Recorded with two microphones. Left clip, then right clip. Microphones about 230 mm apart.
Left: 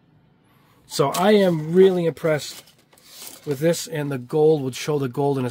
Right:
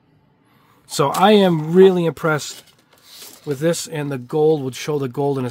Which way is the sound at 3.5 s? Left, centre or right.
Centre.